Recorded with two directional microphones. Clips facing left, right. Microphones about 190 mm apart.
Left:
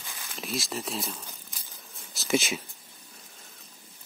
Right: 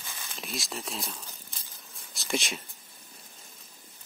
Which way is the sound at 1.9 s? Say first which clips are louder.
Left 5 dB; centre (ahead or behind).